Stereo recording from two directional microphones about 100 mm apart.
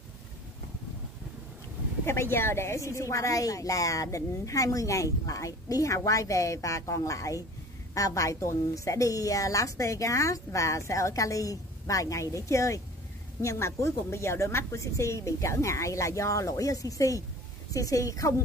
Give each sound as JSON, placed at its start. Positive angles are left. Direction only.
{"t": 2.0, "sound": "a woman's voice", "side_deg": 25}